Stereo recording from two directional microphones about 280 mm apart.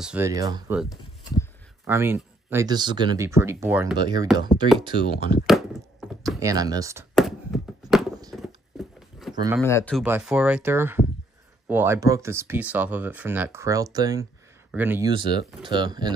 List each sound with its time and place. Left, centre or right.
0.0 s speech: centre
1.9 s speech: centre
5.5 s a sound: centre
6.4 s speech: centre
7.2 s a sound: centre
9.3 s speech: centre
9.6 s speech: centre
10.0 s speech: centre